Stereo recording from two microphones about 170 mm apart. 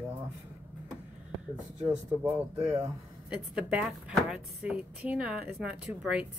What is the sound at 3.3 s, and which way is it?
A woman's voice, 5° right (ahead or behind).